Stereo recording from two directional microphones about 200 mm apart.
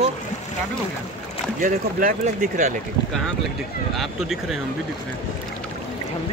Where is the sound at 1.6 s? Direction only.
45° right (ahead or behind).